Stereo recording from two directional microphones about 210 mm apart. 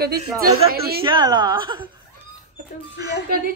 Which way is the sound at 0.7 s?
45° right (ahead or behind).